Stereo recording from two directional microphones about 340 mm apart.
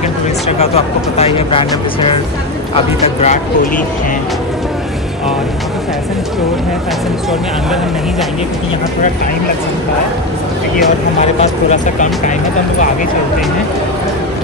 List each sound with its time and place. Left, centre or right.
0.6 s speech: centre
11.7 s speech: left